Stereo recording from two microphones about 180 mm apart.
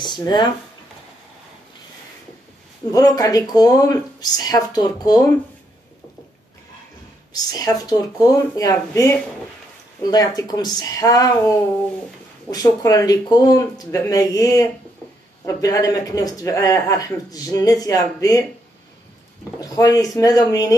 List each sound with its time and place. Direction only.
0.0 s speech: 25° left (ahead or behind)
2.9 s speech: 20° left (ahead or behind)
7.5 s speech: 20° left (ahead or behind)
12.4 s speech: 20° left (ahead or behind)
19.6 s speech: 20° left (ahead or behind)